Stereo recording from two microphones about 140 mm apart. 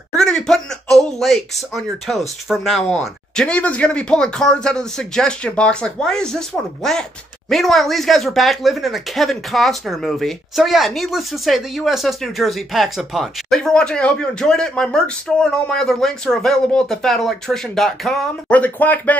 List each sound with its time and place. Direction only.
0.1 s speech: 5° left (ahead or behind)